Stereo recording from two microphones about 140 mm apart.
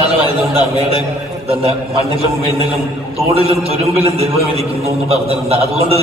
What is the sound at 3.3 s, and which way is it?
A man's voice, 45° right (ahead or behind).